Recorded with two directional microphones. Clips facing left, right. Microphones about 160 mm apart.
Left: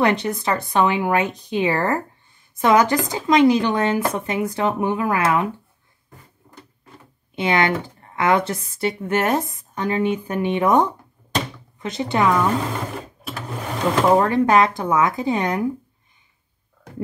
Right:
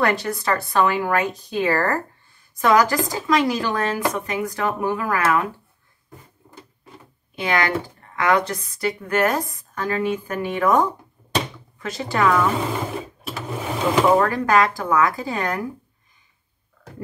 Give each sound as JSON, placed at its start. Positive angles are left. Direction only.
{"t": 0.0, "sound": "speech", "side_deg": 20}
{"t": 7.3, "sound": "speech", "side_deg": 25}
{"t": 13.2, "sound": "sewing machine", "side_deg": -5}
{"t": 14.2, "sound": "speech", "side_deg": 25}